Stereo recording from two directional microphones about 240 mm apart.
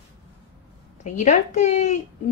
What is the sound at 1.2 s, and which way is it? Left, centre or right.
Speech, left.